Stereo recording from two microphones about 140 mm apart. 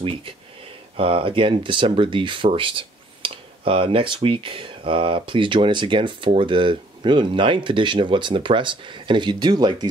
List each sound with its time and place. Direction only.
0.9 s speech: 40° right (ahead or behind)